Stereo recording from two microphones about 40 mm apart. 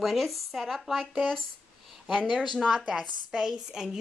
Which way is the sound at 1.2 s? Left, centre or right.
Centre.